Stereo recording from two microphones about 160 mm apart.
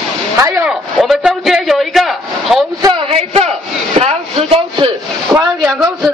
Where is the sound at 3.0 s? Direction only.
40° right (ahead or behind).